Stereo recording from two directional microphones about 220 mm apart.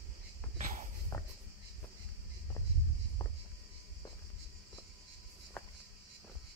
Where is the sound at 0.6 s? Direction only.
35° right (ahead or behind).